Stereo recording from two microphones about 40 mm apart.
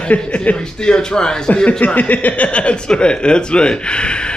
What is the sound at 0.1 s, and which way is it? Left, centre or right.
Speech, left.